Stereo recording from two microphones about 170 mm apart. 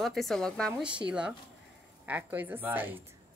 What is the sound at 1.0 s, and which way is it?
A woman's voice, 5° right (ahead or behind).